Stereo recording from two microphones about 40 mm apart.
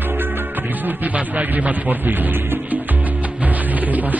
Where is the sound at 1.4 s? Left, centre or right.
Right.